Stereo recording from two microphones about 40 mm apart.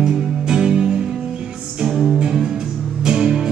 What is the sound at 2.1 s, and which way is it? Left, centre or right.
Music, right.